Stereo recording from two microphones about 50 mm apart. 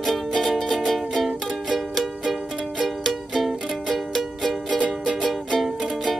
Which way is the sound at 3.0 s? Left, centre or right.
Centre.